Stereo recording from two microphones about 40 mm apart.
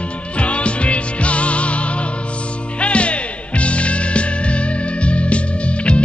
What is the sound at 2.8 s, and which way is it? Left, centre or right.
Music, left.